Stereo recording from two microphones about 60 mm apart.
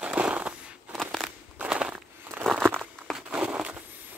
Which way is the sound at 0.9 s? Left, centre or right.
Centre.